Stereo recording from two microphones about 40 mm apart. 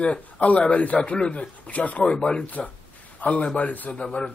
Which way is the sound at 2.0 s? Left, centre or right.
Left.